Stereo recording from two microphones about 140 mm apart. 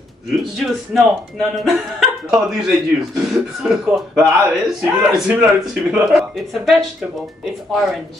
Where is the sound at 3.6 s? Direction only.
5° right (ahead or behind).